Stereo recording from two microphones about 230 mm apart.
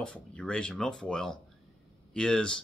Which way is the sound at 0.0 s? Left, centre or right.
Centre.